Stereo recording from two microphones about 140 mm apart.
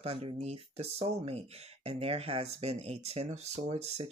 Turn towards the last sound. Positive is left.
turn(degrees=-45)  # may be behind; listen again after turning